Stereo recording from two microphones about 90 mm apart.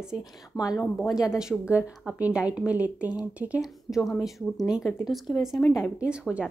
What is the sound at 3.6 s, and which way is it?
A woman's voice, centre (ahead or behind).